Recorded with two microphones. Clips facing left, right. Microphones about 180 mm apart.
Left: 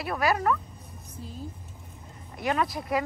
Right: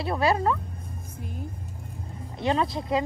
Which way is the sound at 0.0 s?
25° right (ahead or behind).